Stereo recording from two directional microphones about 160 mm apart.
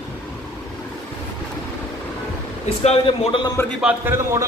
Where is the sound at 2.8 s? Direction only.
40° left (ahead or behind).